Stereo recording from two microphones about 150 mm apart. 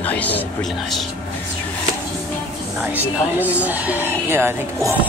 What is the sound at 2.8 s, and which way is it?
Speech, 10° right (ahead or behind).